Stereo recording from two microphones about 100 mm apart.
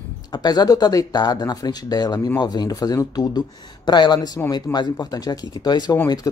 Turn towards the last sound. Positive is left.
turn(degrees=45)  # may be behind; listen again after turning